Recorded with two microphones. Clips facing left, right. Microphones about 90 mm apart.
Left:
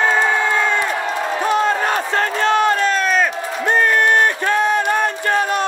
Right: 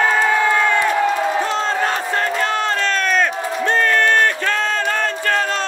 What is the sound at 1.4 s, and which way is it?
Crowd, 15° left (ahead or behind).